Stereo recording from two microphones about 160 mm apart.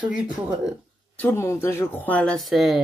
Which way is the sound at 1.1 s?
15° left (ahead or behind).